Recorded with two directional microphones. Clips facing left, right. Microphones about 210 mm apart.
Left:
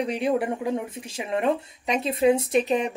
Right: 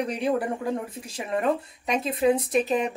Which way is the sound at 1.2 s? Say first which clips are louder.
Left 1 dB; 25° left (ahead or behind).